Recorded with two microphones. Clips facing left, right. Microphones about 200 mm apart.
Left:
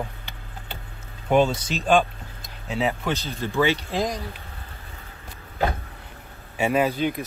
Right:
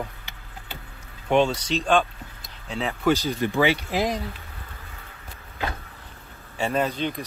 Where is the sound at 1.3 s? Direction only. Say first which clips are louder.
Left 1 dB; 5° left (ahead or behind).